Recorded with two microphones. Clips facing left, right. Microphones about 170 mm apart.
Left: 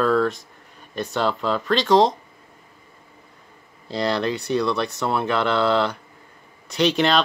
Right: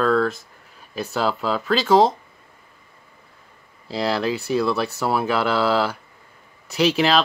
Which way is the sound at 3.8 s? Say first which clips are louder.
Even; 5° right (ahead or behind).